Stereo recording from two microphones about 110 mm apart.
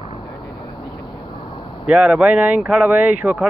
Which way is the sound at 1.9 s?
5° right (ahead or behind).